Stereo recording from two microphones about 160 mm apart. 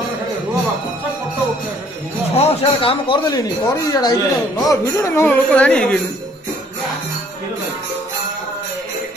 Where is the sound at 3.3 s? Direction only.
25° left (ahead or behind); by 6.0 s 10° left (ahead or behind).